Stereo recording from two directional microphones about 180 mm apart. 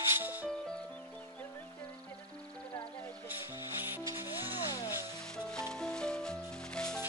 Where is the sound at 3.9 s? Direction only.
10° right (ahead or behind).